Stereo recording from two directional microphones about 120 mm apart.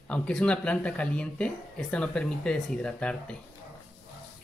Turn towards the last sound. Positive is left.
turn(degrees=10)  # may be behind; listen again after turning